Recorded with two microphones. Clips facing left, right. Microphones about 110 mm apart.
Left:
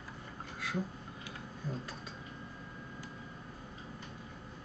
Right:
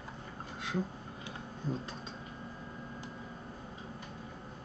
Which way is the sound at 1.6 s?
25° right (ahead or behind).